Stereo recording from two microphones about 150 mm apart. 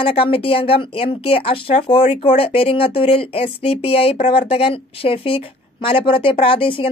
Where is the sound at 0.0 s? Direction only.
40° left (ahead or behind).